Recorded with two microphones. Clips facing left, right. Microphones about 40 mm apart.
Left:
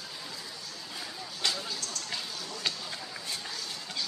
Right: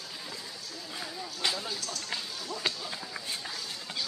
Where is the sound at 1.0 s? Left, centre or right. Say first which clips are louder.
Right 1 dB; centre.